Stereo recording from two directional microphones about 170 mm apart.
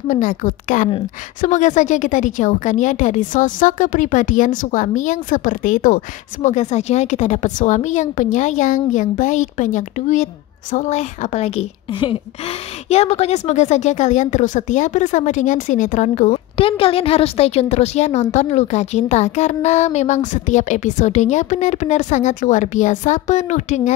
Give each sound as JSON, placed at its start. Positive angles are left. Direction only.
{"t": 0.1, "sound": "speech", "side_deg": 50}
{"t": 16.5, "sound": "speech", "side_deg": 35}